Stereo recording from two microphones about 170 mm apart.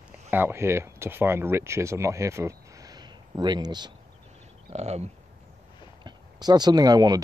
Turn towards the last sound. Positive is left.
turn(degrees=-25)  # may be behind; listen again after turning